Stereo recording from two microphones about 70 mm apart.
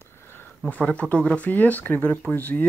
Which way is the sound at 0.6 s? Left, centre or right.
Centre.